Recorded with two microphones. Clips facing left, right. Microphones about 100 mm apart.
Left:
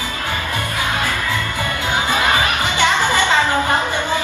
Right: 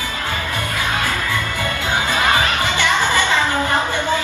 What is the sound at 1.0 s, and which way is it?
Music, 15° left (ahead or behind).